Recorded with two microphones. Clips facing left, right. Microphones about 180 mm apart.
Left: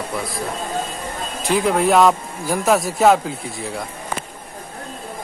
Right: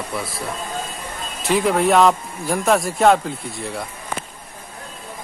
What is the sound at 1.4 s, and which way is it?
Speech, centre (ahead or behind).